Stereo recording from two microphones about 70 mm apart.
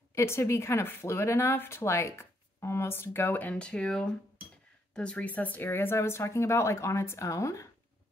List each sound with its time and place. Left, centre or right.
0.1 s speech: left
3.5 s speech: centre; by 7.6 s left